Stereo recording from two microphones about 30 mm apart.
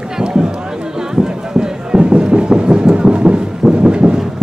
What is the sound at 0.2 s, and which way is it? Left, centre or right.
Run, right.